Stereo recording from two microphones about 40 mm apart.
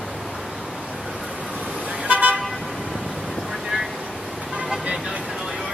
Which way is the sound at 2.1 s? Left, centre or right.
Right.